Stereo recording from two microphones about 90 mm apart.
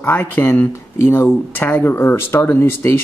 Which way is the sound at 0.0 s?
25° left (ahead or behind).